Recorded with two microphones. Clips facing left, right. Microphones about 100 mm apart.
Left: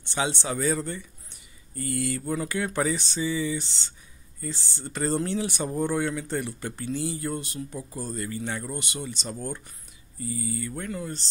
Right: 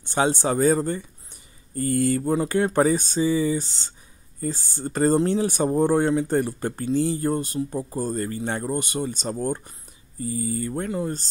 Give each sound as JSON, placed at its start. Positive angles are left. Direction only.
{"t": 0.1, "sound": "speech", "side_deg": -45}
{"t": 10.9, "sound": "speech", "side_deg": -30}